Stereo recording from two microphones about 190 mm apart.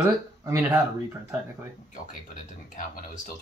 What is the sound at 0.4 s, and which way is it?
Speech, 15° right (ahead or behind).